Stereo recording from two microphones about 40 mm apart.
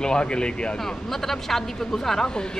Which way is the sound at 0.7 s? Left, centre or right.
Centre.